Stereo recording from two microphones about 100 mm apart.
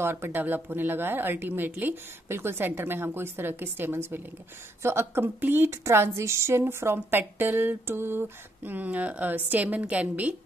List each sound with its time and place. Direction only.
0.0 s a woman's voice: 25° right (ahead or behind)